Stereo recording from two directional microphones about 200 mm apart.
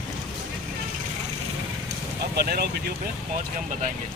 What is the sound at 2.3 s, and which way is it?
Speech, 50° right (ahead or behind).